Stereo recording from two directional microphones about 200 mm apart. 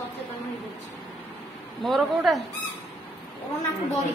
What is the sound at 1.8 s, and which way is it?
Speech, centre (ahead or behind).